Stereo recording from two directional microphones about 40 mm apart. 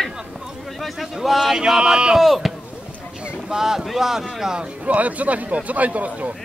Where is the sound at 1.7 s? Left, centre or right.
Centre.